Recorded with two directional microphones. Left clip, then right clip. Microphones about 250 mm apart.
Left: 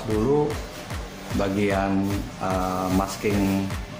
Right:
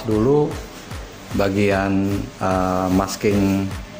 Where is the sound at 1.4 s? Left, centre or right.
Right.